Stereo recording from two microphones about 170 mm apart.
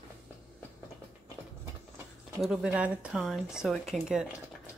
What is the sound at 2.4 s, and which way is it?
Speech, 5° right (ahead or behind).